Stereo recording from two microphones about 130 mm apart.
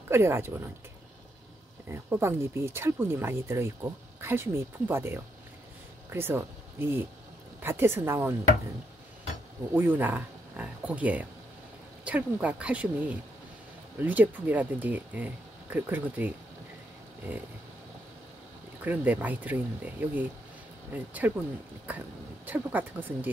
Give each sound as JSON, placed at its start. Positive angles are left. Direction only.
{"t": 0.1, "sound": "speech", "side_deg": -20}
{"t": 1.9, "sound": "speech", "side_deg": -20}
{"t": 9.8, "sound": "speech", "side_deg": -15}
{"t": 18.9, "sound": "speech", "side_deg": -10}